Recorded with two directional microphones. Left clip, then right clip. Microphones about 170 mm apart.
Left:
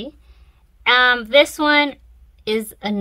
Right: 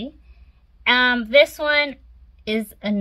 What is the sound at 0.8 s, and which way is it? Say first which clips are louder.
A woman's voice: left 3 dB; 40° left (ahead or behind).